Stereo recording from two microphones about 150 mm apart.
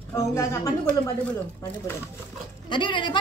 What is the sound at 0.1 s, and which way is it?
Speech, 20° left (ahead or behind).